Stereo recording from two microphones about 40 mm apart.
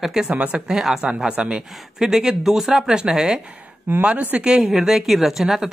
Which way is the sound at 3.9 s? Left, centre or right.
Right.